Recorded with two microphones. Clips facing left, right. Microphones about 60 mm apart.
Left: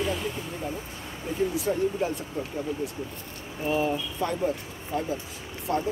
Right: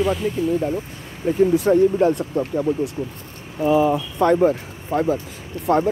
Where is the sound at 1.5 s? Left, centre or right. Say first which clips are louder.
Right 11 dB; right.